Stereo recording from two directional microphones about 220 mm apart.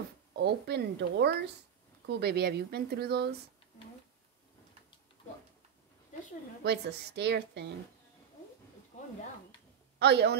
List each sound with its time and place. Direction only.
0.4 s speech: 50° right (ahead or behind)
6.6 s speech: 50° right (ahead or behind)
9.9 s a woman's voice: 50° right (ahead or behind)